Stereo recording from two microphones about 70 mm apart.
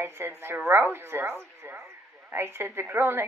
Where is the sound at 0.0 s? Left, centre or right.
Right.